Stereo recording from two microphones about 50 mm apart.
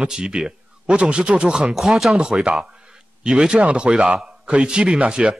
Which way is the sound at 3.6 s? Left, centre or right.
Right.